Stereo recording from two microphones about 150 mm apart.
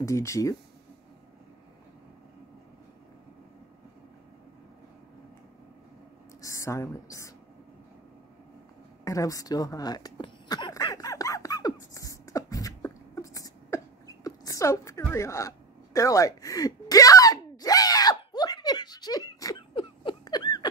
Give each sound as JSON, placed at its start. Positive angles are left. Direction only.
{"t": 0.0, "sound": "a woman's voice", "side_deg": 20}
{"t": 6.4, "sound": "a woman's voice", "side_deg": 20}
{"t": 9.0, "sound": "a sound", "side_deg": 20}